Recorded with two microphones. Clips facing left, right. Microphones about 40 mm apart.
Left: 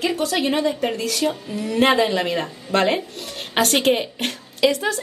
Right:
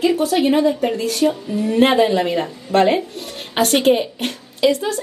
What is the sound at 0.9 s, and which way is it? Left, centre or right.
Speech, right.